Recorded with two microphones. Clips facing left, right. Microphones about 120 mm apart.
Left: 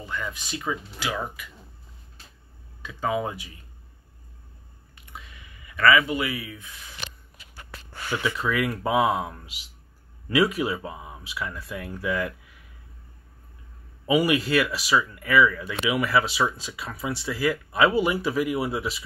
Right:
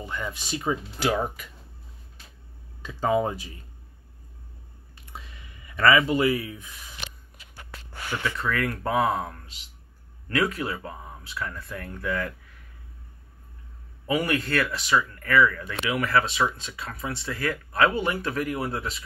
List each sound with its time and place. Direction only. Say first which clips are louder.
0.0 s speech: even; 25° right (ahead or behind)
0.9 s speech: right 5 dB; 45° right (ahead or behind)
2.9 s speech: right 3 dB; 35° right (ahead or behind)
5.1 s a sound: even; 30° right (ahead or behind)
8.2 s speech: left 2 dB; 10° left (ahead or behind)
14.0 s speech: left 4 dB; 10° left (ahead or behind)